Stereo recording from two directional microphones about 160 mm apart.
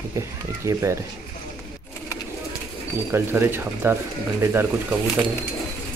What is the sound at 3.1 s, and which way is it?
Speech, 15° right (ahead or behind).